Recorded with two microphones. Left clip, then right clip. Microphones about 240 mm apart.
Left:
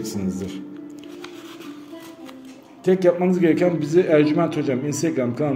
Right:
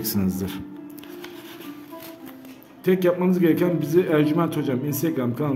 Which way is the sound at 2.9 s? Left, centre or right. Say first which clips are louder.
Left 3 dB; centre.